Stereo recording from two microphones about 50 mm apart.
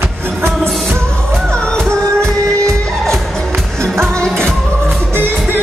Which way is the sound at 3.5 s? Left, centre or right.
Right.